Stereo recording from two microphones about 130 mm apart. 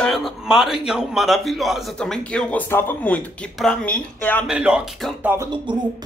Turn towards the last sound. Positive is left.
turn(degrees=-35)  # may be behind; listen again after turning